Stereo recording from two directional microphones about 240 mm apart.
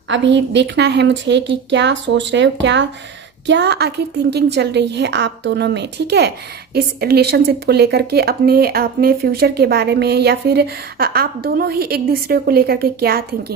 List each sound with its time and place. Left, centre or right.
0.1 s a woman's voice: right